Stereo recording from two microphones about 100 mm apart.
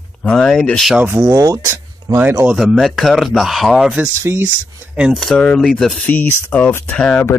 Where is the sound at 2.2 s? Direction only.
20° right (ahead or behind).